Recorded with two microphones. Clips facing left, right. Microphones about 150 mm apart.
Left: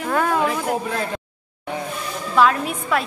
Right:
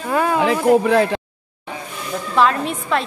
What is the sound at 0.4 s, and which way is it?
Speech, 90° right.